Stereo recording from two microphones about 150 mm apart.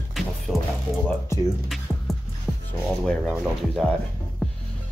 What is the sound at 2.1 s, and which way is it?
Music, centre (ahead or behind).